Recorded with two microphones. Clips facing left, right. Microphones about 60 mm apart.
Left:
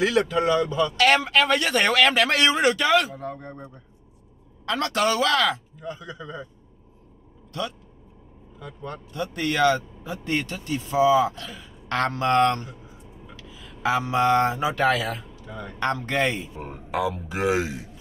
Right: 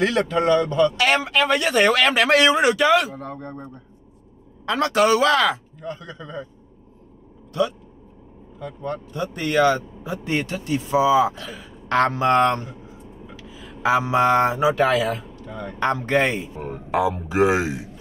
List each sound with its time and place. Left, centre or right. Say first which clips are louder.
0.0 s speech: right 1 dB; centre
3.2 s speech: right 1 dB; centre
4.6 s speech: right 5 dB; centre
5.8 s speech: right 2 dB; centre
8.5 s speech: right 7 dB; centre
9.1 s speech: right 4 dB; centre
13.5 s a sound: right 4 dB; centre
13.8 s speech: right 3 dB; centre
15.3 s speech: right 4 dB; centre
15.8 s speech: right 4 dB; centre
16.5 s speech: right 5 dB; centre
16.9 s a man's voice: right 5 dB; centre